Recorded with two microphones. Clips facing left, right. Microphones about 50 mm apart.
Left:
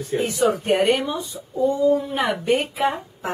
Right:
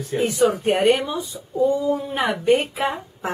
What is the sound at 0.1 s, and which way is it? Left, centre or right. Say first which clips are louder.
Speech: right 1 dB; centre.